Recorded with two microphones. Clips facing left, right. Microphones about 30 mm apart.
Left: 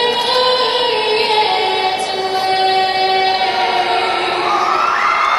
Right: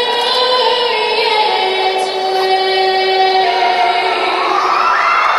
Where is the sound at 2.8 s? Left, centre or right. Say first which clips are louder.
Right 2 dB; centre.